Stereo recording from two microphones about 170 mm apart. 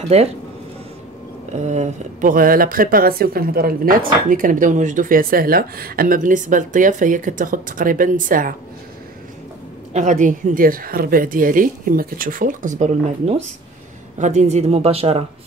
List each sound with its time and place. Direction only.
0.1 s speech: 40° right (ahead or behind)
1.5 s speech: 45° right (ahead or behind)
9.9 s speech: 45° right (ahead or behind)